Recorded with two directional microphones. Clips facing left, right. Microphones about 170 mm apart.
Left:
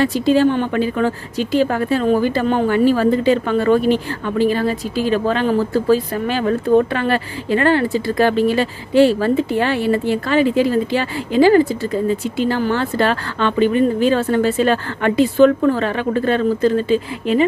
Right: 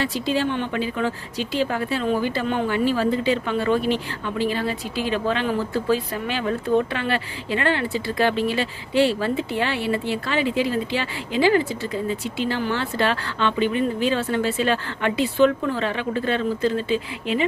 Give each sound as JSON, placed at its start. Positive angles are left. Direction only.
{"t": 0.0, "sound": "speech", "side_deg": 45}